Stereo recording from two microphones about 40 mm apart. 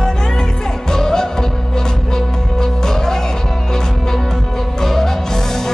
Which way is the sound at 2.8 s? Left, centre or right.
Centre.